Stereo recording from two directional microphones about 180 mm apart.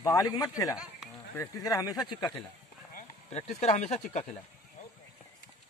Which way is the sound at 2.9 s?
40° left (ahead or behind).